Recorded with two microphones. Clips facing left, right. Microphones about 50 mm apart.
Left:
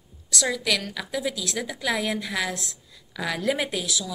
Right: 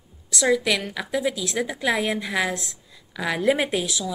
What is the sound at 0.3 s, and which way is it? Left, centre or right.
A woman's voice, right.